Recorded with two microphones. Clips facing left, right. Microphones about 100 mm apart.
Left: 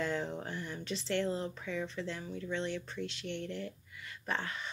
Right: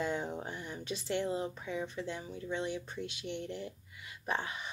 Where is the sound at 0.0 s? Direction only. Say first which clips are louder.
Even; 15° right (ahead or behind).